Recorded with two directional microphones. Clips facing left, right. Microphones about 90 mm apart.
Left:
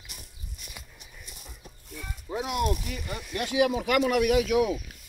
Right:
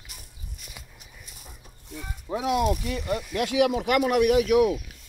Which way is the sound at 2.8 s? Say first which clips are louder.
Right 8 dB; 85° right.